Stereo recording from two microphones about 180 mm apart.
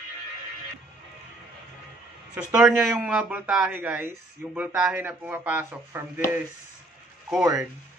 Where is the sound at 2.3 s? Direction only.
5° right (ahead or behind).